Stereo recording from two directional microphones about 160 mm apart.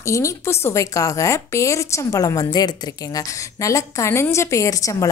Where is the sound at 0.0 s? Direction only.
20° left (ahead or behind).